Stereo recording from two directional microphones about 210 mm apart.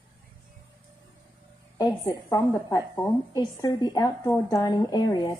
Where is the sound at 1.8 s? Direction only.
20° left (ahead or behind).